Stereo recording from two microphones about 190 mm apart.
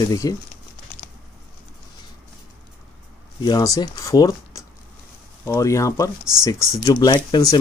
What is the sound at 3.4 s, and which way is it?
Speech, 20° left (ahead or behind).